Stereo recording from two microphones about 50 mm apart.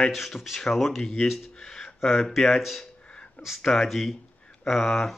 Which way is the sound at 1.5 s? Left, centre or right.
Centre.